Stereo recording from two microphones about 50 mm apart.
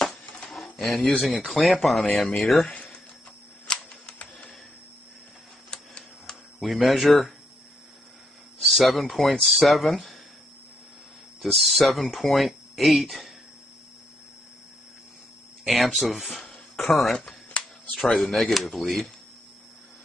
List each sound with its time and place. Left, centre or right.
0.0 s a sound: centre
1.2 s speech: centre
3.6 s typewriter: centre
5.7 s typewriter: centre
6.6 s speech: centre
8.5 s speech: centre
11.4 s speech: centre
15.6 s speech: centre
17.1 s speech: centre
17.9 s speech: centre